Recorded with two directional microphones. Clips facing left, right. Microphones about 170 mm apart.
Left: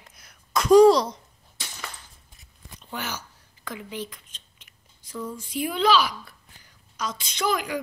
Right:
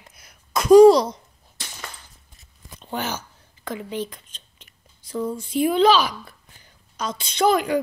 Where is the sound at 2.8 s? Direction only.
30° right (ahead or behind).